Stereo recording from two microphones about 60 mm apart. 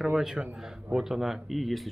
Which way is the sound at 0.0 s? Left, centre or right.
Centre.